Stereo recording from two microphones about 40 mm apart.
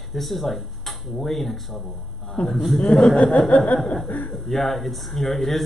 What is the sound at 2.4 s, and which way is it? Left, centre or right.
Speech, left.